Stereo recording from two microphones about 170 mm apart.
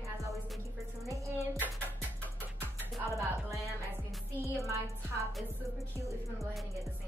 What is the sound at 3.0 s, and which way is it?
Music, 20° right (ahead or behind).